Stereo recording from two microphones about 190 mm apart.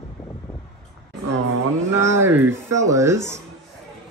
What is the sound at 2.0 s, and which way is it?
Speech, 15° right (ahead or behind).